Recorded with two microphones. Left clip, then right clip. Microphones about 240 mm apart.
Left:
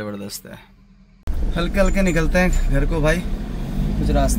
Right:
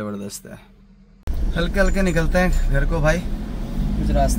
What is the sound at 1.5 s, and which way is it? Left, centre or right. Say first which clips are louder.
Speech: left 1 dB; centre.